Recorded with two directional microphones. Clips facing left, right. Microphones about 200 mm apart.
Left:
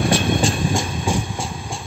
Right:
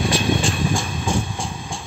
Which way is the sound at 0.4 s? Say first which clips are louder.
Left 2 dB; 30° left (ahead or behind).